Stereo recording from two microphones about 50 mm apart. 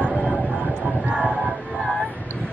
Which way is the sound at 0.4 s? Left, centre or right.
Right.